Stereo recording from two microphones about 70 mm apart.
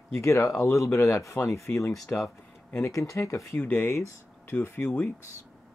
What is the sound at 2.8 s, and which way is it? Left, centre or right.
Speech, left.